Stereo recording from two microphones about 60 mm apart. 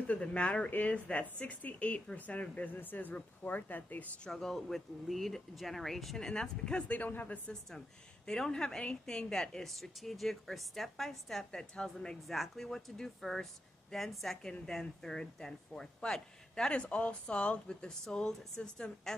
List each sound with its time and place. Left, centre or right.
0.0 s speech: left
4.2 s a woman's voice: centre
6.9 s speech: left
8.3 s a woman's voice: centre